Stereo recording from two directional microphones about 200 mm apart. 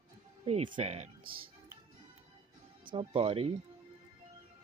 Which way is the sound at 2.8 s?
25° right (ahead or behind).